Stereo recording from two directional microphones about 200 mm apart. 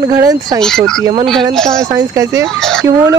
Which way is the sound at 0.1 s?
20° right (ahead or behind).